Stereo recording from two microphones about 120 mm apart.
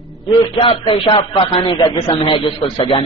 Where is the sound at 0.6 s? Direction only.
50° left (ahead or behind).